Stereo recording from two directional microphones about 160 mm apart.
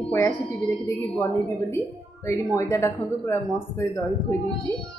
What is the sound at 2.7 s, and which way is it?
Speech, 20° left (ahead or behind).